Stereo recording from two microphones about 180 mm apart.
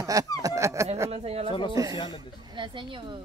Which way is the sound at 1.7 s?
20° right (ahead or behind).